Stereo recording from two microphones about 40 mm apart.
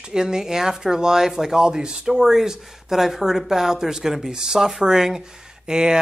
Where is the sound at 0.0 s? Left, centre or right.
Centre.